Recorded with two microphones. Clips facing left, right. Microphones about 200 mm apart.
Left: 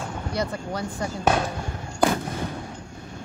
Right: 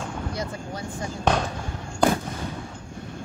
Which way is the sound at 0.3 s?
70° left (ahead or behind).